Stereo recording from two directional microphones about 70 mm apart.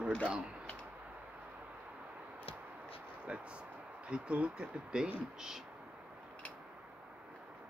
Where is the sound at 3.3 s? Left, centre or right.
Centre.